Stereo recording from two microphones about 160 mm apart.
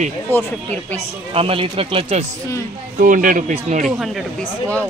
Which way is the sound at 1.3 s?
35° right (ahead or behind).